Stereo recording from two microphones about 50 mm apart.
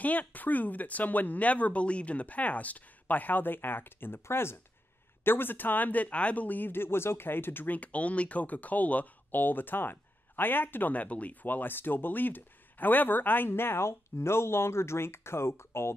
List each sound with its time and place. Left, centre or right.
0.0 s speech: left
11.4 s speech: left
13.5 s speech: left